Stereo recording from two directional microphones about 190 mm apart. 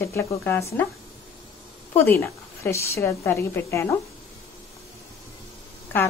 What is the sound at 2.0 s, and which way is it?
A woman's voice, 10° left (ahead or behind).